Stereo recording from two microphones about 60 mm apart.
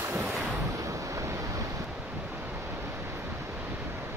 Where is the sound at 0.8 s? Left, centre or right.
Right.